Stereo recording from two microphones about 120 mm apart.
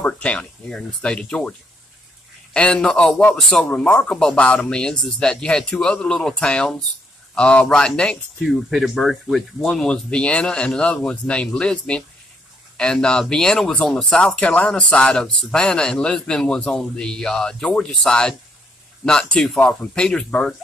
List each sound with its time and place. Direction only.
0.0 s speech: 10° left (ahead or behind)
2.5 s speech: 10° left (ahead or behind)